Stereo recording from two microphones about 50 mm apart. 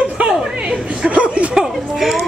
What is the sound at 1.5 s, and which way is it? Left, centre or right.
Speech, centre.